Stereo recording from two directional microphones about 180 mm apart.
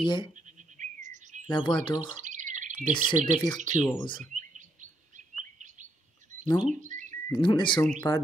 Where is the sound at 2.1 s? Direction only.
45° right (ahead or behind).